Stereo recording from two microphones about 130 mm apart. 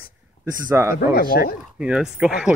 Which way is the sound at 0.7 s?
20° right (ahead or behind).